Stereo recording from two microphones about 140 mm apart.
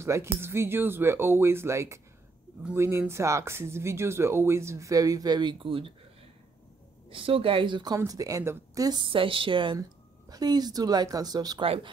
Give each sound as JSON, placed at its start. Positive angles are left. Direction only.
{"t": 0.0, "sound": "speech", "side_deg": -20}
{"t": 7.1, "sound": "a woman's voice", "side_deg": -40}
{"t": 11.6, "sound": "speech", "side_deg": -40}